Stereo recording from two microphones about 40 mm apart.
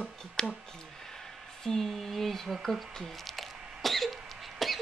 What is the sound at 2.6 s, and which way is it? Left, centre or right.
Throat clearing, centre.